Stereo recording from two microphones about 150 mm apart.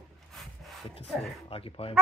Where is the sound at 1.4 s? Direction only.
40° left (ahead or behind).